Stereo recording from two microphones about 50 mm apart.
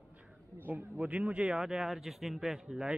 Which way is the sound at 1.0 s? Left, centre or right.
Right.